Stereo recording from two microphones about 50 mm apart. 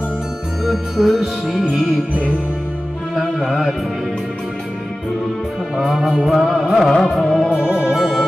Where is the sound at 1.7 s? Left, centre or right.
Centre.